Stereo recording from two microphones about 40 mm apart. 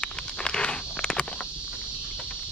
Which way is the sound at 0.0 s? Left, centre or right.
Left.